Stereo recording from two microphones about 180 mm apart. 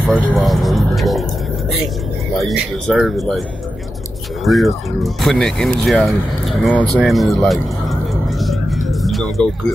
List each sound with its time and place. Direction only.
0.0 s vehicle: 5° left (ahead or behind)
2.3 s speech: centre (ahead or behind)
4.5 s speech: centre (ahead or behind)
6.8 s a sound: centre (ahead or behind)